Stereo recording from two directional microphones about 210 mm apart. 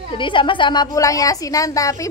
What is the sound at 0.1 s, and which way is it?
A woman's voice, 25° left (ahead or behind).